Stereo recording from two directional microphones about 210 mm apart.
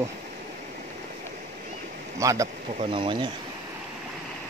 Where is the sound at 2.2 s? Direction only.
15° right (ahead or behind).